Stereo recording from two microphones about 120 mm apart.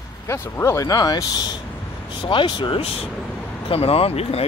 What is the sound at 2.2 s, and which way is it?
Speech, 45° left (ahead or behind).